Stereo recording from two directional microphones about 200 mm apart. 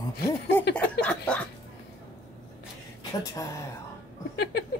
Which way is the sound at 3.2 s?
15° left (ahead or behind).